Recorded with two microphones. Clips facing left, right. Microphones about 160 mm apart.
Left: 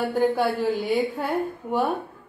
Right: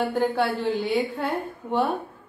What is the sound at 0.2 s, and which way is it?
Speech, centre (ahead or behind).